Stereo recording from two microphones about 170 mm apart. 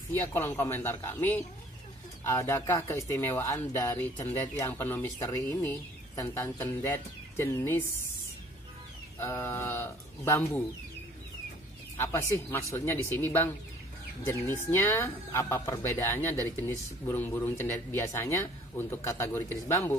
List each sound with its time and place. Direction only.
0.1 s speech: 15° left (ahead or behind)
9.2 s speech: 15° left (ahead or behind)
12.0 s speech: 15° left (ahead or behind)